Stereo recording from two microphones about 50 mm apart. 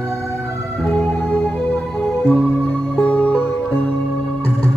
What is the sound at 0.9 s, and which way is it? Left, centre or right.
Music, left.